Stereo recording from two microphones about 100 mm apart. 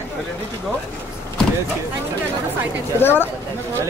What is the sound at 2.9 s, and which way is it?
Speech, 20° left (ahead or behind).